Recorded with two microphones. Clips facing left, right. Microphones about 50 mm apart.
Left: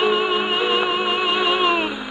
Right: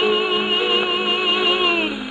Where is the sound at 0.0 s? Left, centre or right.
Centre.